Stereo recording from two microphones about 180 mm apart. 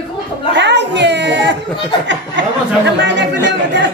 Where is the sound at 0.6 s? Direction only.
75° right (ahead or behind).